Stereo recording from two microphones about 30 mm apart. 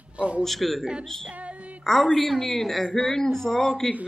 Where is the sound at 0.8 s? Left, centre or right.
Right.